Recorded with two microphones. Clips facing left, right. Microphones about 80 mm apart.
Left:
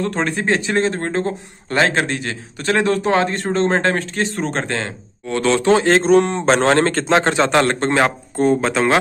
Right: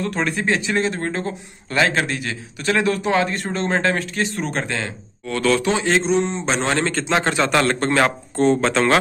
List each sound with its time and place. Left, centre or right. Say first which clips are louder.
0.0 s speech: left 2 dB; left
5.2 s speech: left 1 dB; left
5.7 s speech: left 6 dB; left
8.4 s speech: left 1 dB; centre